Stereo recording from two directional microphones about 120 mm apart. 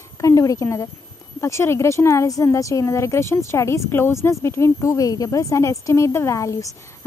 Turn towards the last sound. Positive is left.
turn(degrees=25)  # may be behind; listen again after turning